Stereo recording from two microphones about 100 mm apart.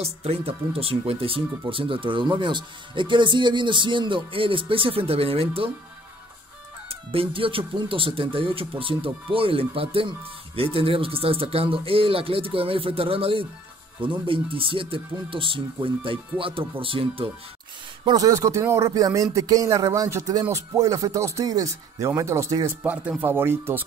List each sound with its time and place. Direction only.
0.0 s speech: 85° right; by 5.7 s 70° right (ahead or behind)
6.9 s speech: 65° right (ahead or behind)
18.1 s speech: 35° right (ahead or behind)
22.8 s speech: 20° right (ahead or behind)